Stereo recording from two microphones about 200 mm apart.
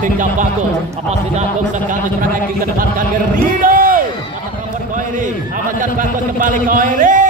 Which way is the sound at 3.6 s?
45° right (ahead or behind).